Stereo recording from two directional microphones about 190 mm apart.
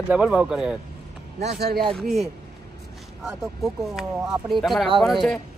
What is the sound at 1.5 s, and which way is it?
Speech, 55° right (ahead or behind).